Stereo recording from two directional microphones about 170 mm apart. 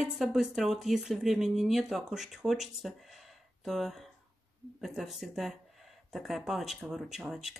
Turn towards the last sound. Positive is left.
turn(degrees=0)  # may be behind; listen again after turning